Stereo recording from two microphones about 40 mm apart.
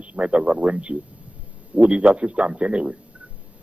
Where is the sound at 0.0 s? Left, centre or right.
Right.